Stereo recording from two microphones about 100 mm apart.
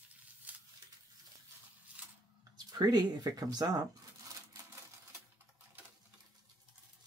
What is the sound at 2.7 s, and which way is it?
Speech, 40° right (ahead or behind).